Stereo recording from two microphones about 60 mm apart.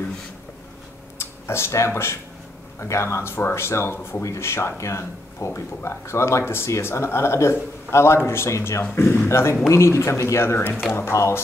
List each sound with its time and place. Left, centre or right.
1.1 s a sound: left
1.9 s speech: left
4.2 s speech: left
8.9 s speech: left